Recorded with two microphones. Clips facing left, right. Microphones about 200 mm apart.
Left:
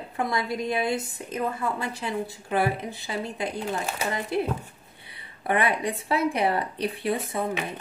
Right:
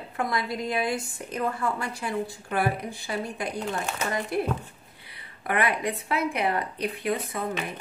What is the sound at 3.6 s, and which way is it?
Speech, 10° left (ahead or behind).